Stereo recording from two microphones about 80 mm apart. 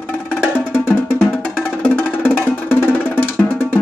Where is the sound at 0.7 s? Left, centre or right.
Left.